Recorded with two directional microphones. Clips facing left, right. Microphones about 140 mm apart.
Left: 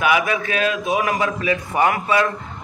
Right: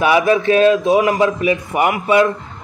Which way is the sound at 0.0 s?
30° right (ahead or behind).